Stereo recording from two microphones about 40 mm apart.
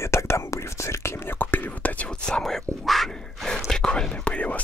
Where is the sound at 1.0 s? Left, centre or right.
Left.